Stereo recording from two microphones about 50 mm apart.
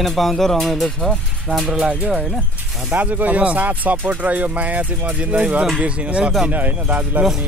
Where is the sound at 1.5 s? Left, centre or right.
Left.